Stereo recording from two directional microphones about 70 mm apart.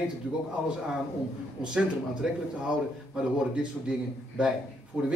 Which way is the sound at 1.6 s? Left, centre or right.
Centre.